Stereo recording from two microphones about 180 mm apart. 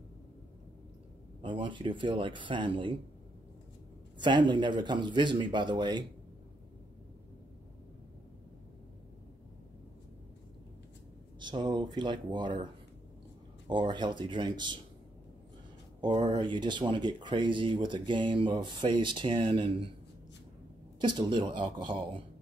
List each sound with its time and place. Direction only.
1.4 s speech: 25° right (ahead or behind)
4.2 s speech: 25° right (ahead or behind)
11.3 s speech: 25° right (ahead or behind)
16.0 s speech: 25° right (ahead or behind)
21.0 s speech: 25° right (ahead or behind)